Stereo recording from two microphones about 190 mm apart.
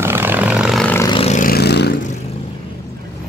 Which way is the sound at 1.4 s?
55° left (ahead or behind).